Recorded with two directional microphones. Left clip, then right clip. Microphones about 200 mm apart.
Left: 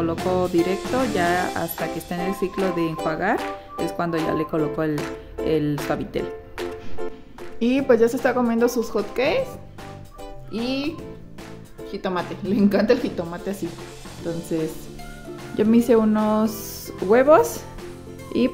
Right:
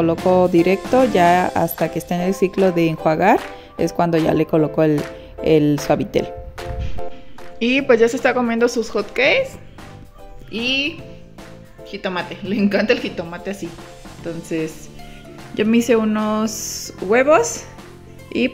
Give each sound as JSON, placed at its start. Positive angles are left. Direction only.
{"t": 0.2, "sound": "speech", "side_deg": -25}
{"t": 7.5, "sound": "speech", "side_deg": 5}
{"t": 10.5, "sound": "speech", "side_deg": 0}
{"t": 11.9, "sound": "speech", "side_deg": 0}